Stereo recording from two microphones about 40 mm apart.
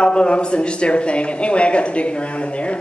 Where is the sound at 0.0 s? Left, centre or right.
Left.